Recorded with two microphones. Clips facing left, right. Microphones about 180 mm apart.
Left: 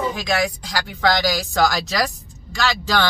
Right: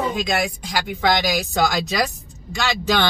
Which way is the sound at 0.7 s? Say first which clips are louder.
Right 2 dB; 20° right (ahead or behind).